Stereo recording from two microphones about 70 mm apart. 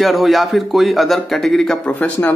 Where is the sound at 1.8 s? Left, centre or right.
Centre.